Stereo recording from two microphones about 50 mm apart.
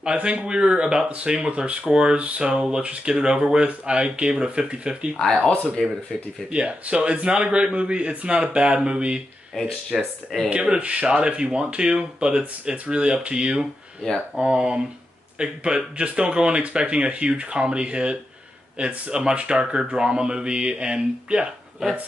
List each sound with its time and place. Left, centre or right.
0.0 s speech: right
5.8 s speech: centre
6.5 s speech: right
9.9 s speech: centre
10.5 s speech: centre